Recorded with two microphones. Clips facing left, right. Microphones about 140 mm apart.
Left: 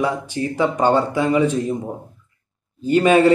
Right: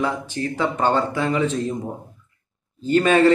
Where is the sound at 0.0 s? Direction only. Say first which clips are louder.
Left 2 dB; 15° left (ahead or behind).